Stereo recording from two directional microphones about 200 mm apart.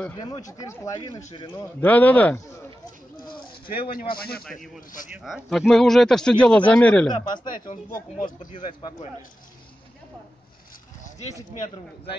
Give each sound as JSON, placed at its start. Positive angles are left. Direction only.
{"t": 0.5, "sound": "speech", "side_deg": 15}
{"t": 1.8, "sound": "speech", "side_deg": 10}
{"t": 4.7, "sound": "a man's voice", "side_deg": 40}
{"t": 5.1, "sound": "a man's voice", "side_deg": 0}
{"t": 7.1, "sound": "speech", "side_deg": 20}
{"t": 7.9, "sound": "speech", "side_deg": 40}